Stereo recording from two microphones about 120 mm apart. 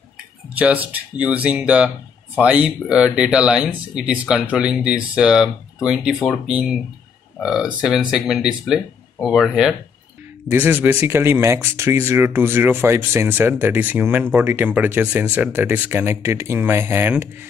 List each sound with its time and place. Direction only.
0.6 s speech: 15° right (ahead or behind)
10.5 s speech: 15° right (ahead or behind)